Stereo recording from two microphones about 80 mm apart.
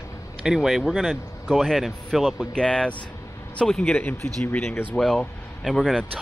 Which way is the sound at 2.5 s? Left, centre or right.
Centre.